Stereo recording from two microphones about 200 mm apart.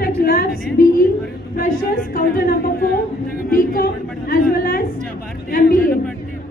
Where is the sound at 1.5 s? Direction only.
45° left (ahead or behind).